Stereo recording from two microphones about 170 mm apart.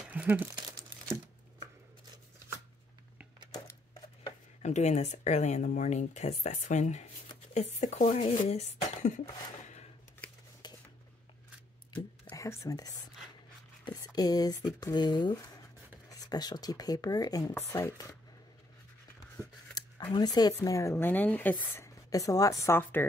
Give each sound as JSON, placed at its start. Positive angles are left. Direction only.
{"t": 0.1, "sound": "speech", "side_deg": -10}
{"t": 4.6, "sound": "speech", "side_deg": 40}
{"t": 10.6, "sound": "a sound", "side_deg": 25}
{"t": 12.3, "sound": "speech", "side_deg": 15}
{"t": 19.8, "sound": "a sound", "side_deg": 25}
{"t": 20.1, "sound": "speech", "side_deg": 25}